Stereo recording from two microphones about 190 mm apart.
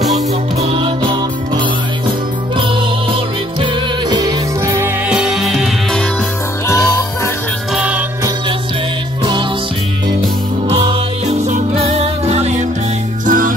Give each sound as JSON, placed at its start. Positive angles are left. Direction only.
{"t": 0.6, "sound": "music", "side_deg": -30}
{"t": 3.6, "sound": "music", "side_deg": -20}
{"t": 6.7, "sound": "music", "side_deg": 20}
{"t": 7.7, "sound": "music", "side_deg": -10}
{"t": 9.2, "sound": "music", "side_deg": -25}
{"t": 10.7, "sound": "music", "side_deg": -30}